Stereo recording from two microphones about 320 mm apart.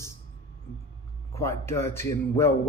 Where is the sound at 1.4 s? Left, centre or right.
Centre.